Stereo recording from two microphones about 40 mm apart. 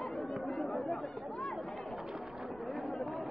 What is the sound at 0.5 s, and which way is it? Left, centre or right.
Chatter, centre.